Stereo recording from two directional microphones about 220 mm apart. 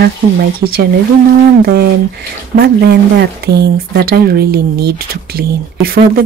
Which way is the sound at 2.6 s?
45° right (ahead or behind).